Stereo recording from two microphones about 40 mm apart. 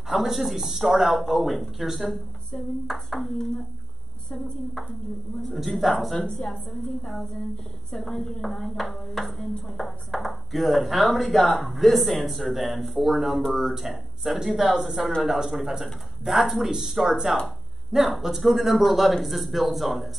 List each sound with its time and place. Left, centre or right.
0.1 s speech: centre
5.5 s speech: centre
7.9 s speech: centre